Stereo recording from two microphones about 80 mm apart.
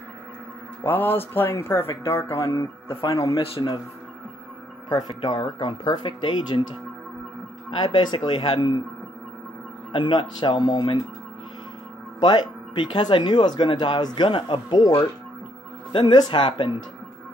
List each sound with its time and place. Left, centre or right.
0.8 s speech: left
4.8 s speech: left
7.7 s speech: left
9.9 s speech: left
12.2 s speech: left
14.8 s speech: left
15.9 s speech: left